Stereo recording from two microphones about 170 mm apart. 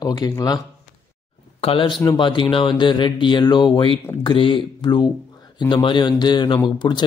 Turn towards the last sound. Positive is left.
turn(degrees=25)  # may be behind; listen again after turning